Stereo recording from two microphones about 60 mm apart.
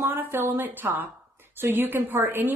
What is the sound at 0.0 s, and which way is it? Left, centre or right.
Speech, right.